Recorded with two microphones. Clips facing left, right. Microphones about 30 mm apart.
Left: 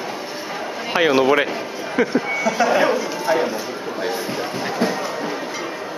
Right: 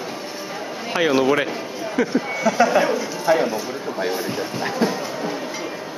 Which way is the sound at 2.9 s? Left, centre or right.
Centre.